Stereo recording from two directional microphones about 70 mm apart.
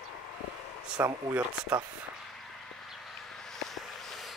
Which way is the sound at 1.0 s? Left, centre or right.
Right.